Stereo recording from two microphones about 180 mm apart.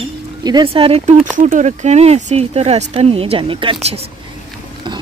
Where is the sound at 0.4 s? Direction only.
20° right (ahead or behind).